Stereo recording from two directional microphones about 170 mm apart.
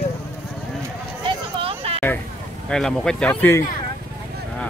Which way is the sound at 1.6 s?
35° right (ahead or behind).